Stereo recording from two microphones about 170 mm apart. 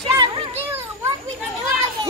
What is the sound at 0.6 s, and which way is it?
Children playing, 10° right (ahead or behind).